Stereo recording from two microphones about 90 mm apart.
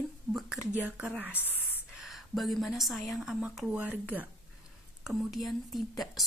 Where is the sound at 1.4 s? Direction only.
20° right (ahead or behind).